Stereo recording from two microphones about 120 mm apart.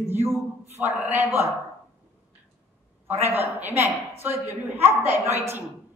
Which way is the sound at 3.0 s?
20° right (ahead or behind).